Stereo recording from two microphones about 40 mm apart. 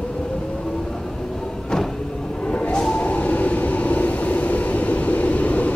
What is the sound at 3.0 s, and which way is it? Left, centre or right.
Train, left.